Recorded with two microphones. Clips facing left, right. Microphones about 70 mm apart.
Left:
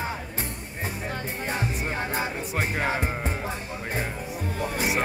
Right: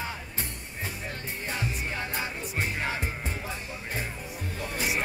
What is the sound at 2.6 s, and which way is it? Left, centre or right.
Music, left.